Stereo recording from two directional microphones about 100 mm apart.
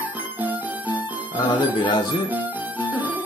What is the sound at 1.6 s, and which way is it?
Speech, 50° left (ahead or behind).